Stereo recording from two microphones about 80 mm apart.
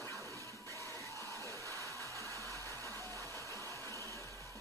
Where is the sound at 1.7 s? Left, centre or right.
Left.